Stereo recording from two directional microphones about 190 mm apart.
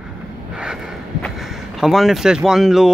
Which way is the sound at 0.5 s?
5° right (ahead or behind).